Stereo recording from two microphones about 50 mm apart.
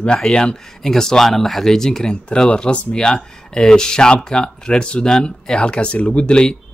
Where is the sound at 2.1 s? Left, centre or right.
Centre.